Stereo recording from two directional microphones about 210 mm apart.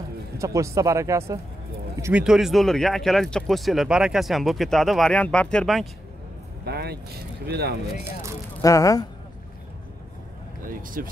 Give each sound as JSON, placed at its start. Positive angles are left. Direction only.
{"t": 0.4, "sound": "speech", "side_deg": -15}
{"t": 6.6, "sound": "speech", "side_deg": -50}
{"t": 7.9, "sound": "speech", "side_deg": -10}
{"t": 8.5, "sound": "speech", "side_deg": 15}
{"t": 10.7, "sound": "speech", "side_deg": -40}